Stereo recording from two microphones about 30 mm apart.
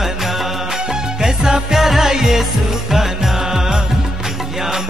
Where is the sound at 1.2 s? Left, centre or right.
Right.